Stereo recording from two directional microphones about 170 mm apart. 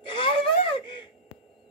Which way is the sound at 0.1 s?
30° left (ahead or behind).